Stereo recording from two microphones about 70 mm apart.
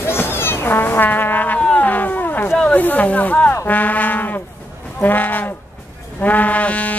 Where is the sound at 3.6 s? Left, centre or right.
Left.